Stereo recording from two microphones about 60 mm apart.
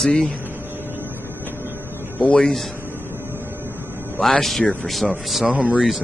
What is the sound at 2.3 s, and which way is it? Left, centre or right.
Speech, centre.